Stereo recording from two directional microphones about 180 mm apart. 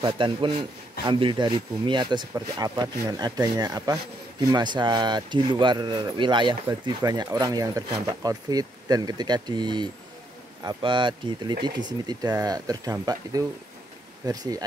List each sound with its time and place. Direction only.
0.0 s speech: 30° right (ahead or behind)